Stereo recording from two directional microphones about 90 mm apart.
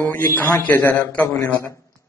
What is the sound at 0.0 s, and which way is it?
A man's voice, 20° left (ahead or behind).